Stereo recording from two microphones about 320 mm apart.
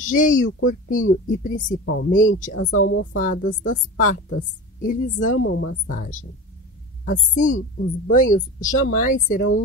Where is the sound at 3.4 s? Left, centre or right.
Left.